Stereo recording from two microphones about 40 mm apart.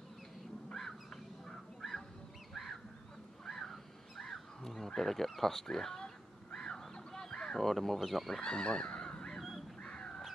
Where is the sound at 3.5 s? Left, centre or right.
Centre.